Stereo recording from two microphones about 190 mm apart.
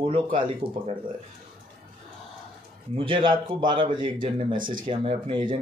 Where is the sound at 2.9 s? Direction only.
25° right (ahead or behind).